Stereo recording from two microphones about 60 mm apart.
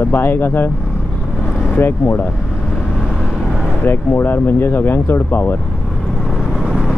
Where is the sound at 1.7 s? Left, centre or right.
Left.